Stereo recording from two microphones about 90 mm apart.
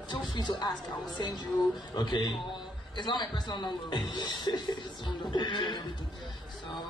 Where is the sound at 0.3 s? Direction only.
55° left (ahead or behind).